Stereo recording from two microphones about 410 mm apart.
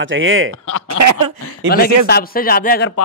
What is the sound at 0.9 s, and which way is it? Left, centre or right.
Speech, right.